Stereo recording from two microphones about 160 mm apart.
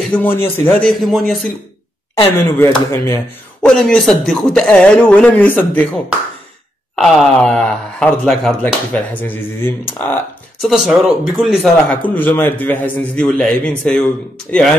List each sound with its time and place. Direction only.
0.1 s speech: 10° left (ahead or behind)
2.3 s speech: 15° left (ahead or behind)
3.6 s speech: 5° left (ahead or behind)
7.0 s speech: 5° left (ahead or behind)
10.6 s speech: 5° right (ahead or behind)
12.2 s speech: 10° left (ahead or behind)